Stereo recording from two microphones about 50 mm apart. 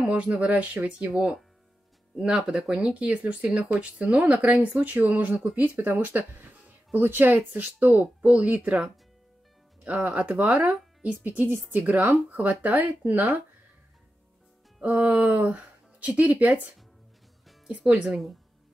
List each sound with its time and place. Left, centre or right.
0.0 s speech: right
8.2 s speech: right
9.8 s speech: right
11.2 s speech: right
14.8 s music: right
16.2 s speech: right
17.6 s speech: right